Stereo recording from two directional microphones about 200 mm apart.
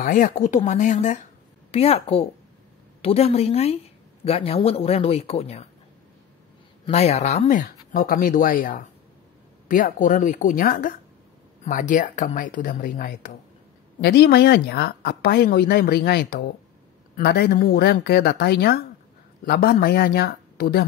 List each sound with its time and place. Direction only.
0.0 s speech: 45° left (ahead or behind)
6.9 s speech: 30° left (ahead or behind)
14.0 s speech: 55° left (ahead or behind)